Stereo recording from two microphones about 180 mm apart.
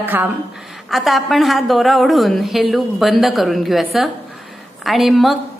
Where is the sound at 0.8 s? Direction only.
Centre (ahead or behind).